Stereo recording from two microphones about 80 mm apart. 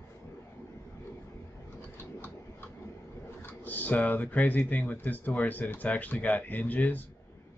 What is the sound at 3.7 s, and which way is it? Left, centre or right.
Speech, left.